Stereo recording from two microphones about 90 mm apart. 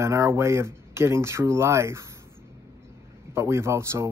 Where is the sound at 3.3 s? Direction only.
30° right (ahead or behind).